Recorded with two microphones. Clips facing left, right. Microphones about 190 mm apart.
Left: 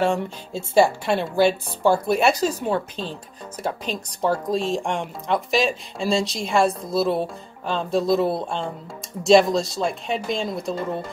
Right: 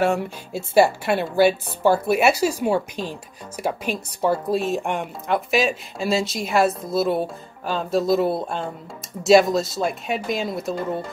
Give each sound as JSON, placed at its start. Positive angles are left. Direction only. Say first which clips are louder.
{"t": 0.0, "sound": "a woman's voice", "louder": "right 1 dB", "side_deg": -10}